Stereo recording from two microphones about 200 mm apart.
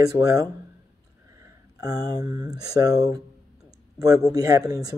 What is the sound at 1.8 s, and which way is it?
Speech, 20° right (ahead or behind).